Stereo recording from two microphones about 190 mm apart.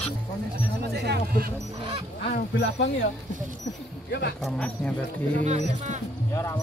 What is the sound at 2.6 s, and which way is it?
Speech, 70° left (ahead or behind).